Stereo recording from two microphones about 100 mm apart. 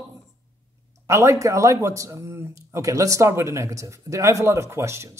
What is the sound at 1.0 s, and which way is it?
Speech, 30° right (ahead or behind).